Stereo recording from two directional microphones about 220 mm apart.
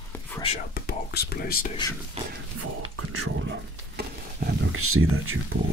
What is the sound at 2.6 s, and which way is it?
Whispering, 90° right.